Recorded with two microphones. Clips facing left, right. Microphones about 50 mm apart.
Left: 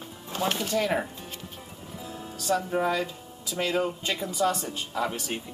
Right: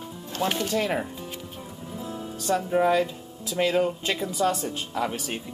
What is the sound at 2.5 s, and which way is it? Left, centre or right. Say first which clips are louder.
Speech: right 4 dB; centre.